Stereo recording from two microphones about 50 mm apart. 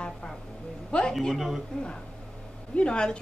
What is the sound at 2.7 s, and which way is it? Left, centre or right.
Speech, left.